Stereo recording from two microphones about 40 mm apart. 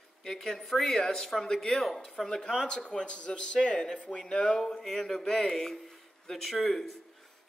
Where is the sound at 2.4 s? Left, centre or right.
Centre.